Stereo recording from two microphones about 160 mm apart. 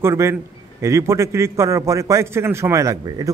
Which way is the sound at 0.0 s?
15° right (ahead or behind).